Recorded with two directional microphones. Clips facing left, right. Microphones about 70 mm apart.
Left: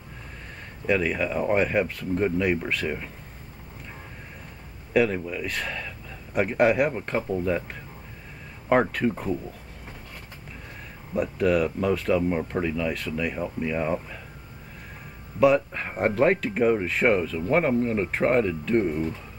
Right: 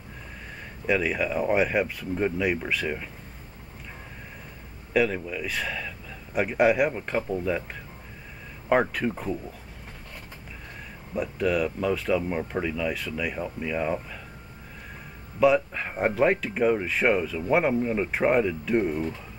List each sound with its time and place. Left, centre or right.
0.8 s speech: centre
4.9 s speech: centre
8.6 s speech: centre
11.1 s speech: centre
15.4 s speech: centre